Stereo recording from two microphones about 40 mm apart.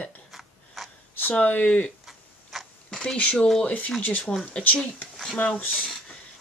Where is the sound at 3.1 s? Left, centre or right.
Left.